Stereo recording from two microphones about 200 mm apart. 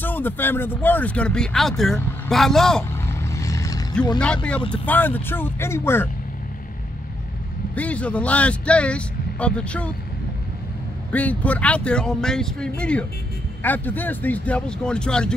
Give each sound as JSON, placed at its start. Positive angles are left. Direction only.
{"t": 0.0, "sound": "speech", "side_deg": 10}
{"t": 3.1, "sound": "vehicle", "side_deg": 15}
{"t": 4.2, "sound": "speech", "side_deg": 5}
{"t": 7.7, "sound": "speech", "side_deg": 5}
{"t": 11.1, "sound": "speech", "side_deg": 10}